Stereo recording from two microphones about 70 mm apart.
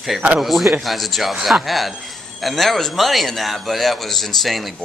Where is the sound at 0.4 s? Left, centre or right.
Centre.